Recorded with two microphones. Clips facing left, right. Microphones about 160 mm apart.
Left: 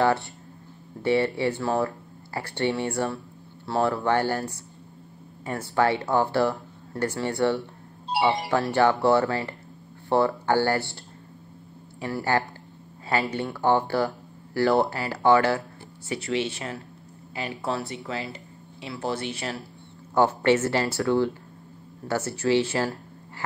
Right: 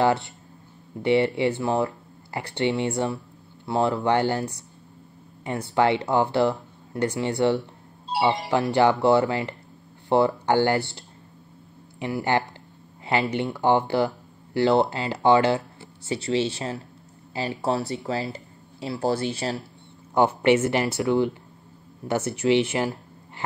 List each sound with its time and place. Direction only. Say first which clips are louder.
0.0 s speech: right 1 dB; 20° right (ahead or behind)
16.1 s speech: right 3 dB; 30° right (ahead or behind)
20.2 s speech: right 1 dB; 20° right (ahead or behind)